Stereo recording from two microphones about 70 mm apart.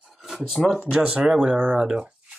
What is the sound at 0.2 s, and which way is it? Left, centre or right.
Speech, centre.